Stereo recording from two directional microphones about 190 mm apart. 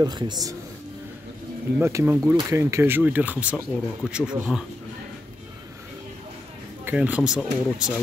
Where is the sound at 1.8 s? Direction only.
10° right (ahead or behind).